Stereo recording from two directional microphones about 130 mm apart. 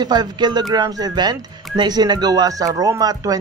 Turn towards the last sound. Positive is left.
turn(degrees=-30)  # may be behind; listen again after turning